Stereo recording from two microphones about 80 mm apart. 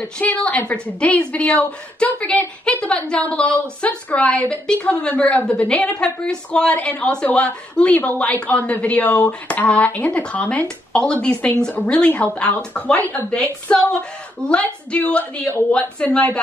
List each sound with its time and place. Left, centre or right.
0.2 s a woman's voice: centre
5.0 s a woman's voice: centre